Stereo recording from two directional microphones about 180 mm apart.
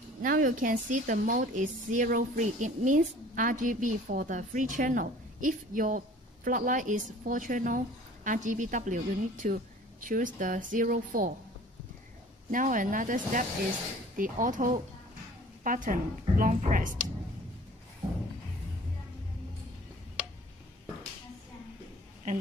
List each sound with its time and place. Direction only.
0.2 s a woman's voice: 50° right (ahead or behind)
12.4 s a woman's voice: 45° right (ahead or behind)